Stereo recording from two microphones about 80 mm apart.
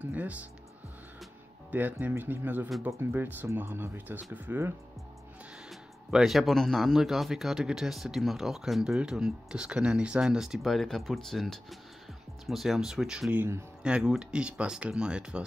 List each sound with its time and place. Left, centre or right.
0.0 s speech: right
1.7 s speech: right
5.7 s speech: centre